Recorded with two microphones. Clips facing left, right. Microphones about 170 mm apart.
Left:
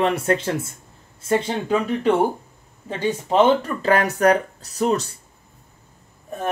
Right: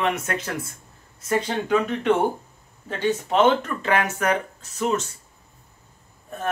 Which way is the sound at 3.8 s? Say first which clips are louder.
Left 4 dB; 35° left (ahead or behind).